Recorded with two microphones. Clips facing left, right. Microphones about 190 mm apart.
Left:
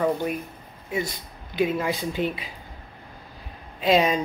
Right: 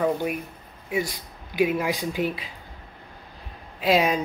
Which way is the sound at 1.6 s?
10° right (ahead or behind).